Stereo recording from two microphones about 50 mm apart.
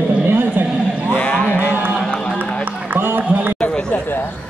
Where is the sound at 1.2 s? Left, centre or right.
Left.